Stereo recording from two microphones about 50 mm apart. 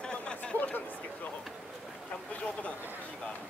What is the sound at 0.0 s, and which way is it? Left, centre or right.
Chatter, centre.